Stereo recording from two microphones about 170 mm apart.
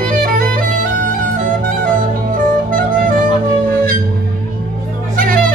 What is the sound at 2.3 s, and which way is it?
Music, 55° right (ahead or behind).